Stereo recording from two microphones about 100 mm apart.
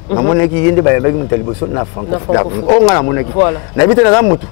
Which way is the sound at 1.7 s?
30° left (ahead or behind).